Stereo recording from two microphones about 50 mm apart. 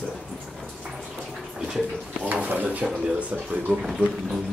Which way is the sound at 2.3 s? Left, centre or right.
Right.